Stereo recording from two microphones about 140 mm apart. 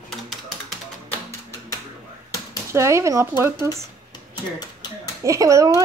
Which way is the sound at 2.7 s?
20° right (ahead or behind).